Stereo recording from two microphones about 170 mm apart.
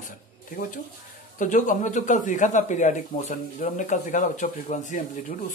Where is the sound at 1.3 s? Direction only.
50° left (ahead or behind).